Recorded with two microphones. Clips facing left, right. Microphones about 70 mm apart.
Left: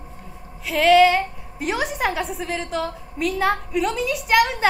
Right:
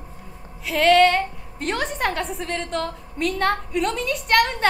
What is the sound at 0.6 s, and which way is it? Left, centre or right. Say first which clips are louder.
A woman's voice: left 1 dB; centre.